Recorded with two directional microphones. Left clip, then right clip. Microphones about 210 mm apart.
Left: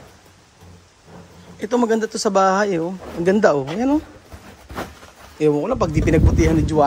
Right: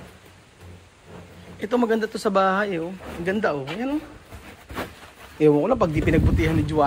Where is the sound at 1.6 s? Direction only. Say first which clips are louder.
Left 3 dB; 25° left (ahead or behind).